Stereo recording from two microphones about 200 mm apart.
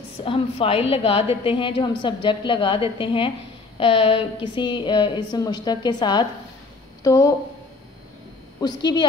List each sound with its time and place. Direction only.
0.2 s a woman's voice: 25° left (ahead or behind)
8.5 s a woman's voice: 20° left (ahead or behind)